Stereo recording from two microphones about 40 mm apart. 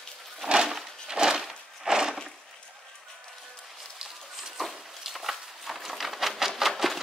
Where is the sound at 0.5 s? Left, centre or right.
Centre.